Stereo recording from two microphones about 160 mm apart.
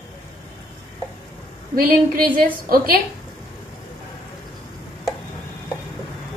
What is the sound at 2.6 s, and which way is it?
Speech, 70° right (ahead or behind).